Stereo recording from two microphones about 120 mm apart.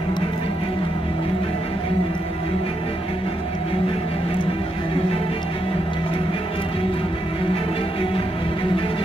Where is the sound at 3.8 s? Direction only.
50° left (ahead or behind).